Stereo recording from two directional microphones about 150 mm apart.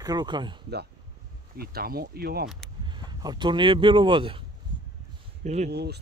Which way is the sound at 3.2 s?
30° right (ahead or behind).